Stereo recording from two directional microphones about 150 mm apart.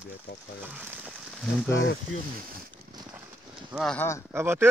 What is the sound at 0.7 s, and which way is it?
Speech, 10° right (ahead or behind).